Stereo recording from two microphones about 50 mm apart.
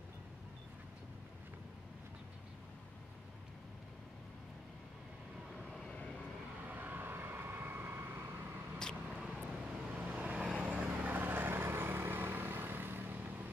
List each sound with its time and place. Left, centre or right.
5.6 s vehicle: centre
6.7 s vehicle: right
9.0 s vehicle: centre
9.9 s vehicle: right